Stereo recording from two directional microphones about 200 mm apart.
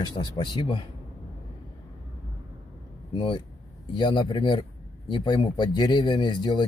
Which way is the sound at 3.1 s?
25° left (ahead or behind).